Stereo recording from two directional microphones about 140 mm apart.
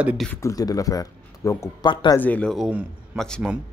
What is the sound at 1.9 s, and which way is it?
Speech, 35° left (ahead or behind).